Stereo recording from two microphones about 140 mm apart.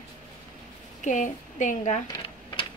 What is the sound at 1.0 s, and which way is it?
Speech, 65° left (ahead or behind).